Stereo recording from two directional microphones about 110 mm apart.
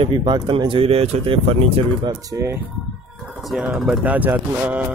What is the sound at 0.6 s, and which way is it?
Speech, 55° right (ahead or behind).